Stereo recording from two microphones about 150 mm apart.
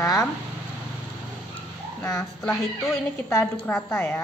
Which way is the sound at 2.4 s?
5° left (ahead or behind).